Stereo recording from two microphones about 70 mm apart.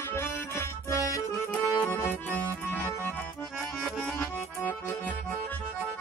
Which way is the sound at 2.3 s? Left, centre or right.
Left.